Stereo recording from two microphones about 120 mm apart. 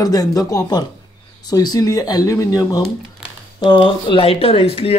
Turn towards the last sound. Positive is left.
turn(degrees=55)  # may be behind; listen again after turning